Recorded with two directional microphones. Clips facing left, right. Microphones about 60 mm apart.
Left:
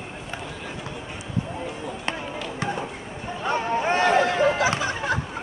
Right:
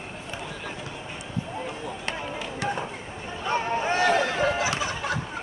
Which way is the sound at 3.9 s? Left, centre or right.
Left.